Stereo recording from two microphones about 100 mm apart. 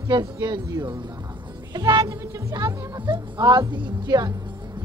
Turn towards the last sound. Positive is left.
turn(degrees=-45)  # may be behind; listen again after turning